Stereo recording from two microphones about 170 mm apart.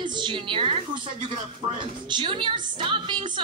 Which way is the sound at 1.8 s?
30° right (ahead or behind).